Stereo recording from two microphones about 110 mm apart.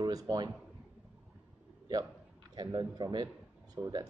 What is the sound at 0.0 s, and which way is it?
Speech, 35° right (ahead or behind).